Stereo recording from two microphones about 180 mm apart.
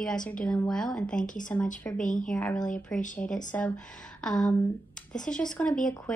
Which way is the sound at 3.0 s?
45° left (ahead or behind).